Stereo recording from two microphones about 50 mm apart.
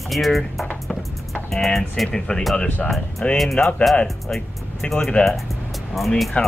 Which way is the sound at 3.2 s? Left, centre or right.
Left.